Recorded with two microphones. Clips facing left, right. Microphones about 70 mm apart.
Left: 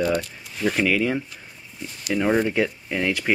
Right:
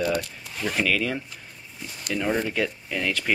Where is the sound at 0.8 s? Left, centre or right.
Centre.